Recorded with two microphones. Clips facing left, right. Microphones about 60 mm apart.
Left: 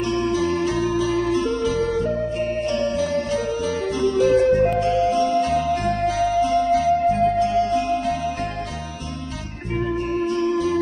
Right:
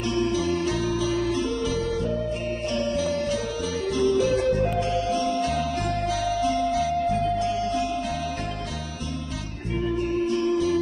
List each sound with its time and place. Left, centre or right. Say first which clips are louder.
0.1 s music: left 2 dB; left